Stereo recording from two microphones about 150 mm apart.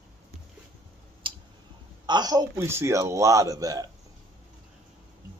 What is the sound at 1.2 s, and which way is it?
Clicking, 35° right (ahead or behind).